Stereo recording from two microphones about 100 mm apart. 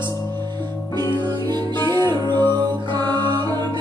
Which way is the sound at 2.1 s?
45° right (ahead or behind).